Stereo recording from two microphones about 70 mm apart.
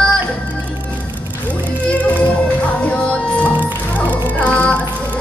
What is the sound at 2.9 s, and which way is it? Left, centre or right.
Music, left.